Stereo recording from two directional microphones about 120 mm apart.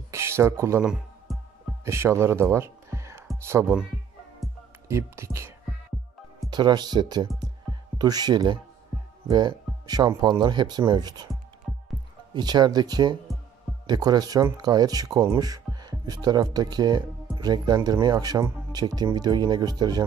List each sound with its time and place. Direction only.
0.1 s speech: 20° right (ahead or behind)
0.8 s music: centre (ahead or behind)
1.9 s speech: 25° right (ahead or behind)
4.8 s speech: 25° right (ahead or behind)
6.5 s speech: 35° right (ahead or behind)
11.7 s music: 5° left (ahead or behind)
12.4 s speech: 35° right (ahead or behind)